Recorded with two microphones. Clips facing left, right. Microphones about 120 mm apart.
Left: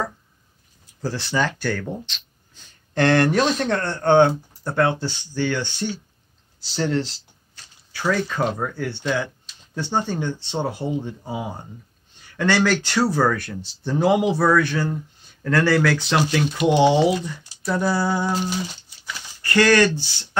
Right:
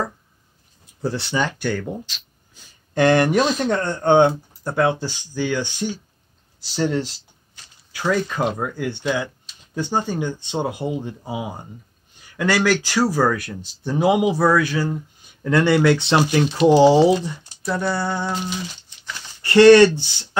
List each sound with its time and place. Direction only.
1.0 s speech: 20° right (ahead or behind)
2.0 s speech: 5° right (ahead or behind)
3.7 s speech: 15° right (ahead or behind); by 17.3 s 30° right (ahead or behind)
17.6 s a sound: 5° left (ahead or behind)
19.4 s speech: 25° right (ahead or behind)